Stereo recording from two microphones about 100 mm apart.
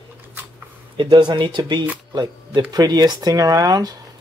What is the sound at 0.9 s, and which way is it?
Speech, 50° right (ahead or behind).